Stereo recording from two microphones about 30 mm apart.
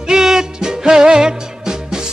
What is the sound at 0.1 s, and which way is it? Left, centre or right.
Music, centre.